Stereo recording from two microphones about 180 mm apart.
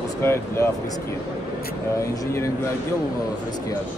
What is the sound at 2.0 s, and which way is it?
Speech, 15° left (ahead or behind).